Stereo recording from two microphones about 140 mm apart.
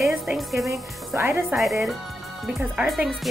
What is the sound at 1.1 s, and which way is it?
Speech, 20° right (ahead or behind).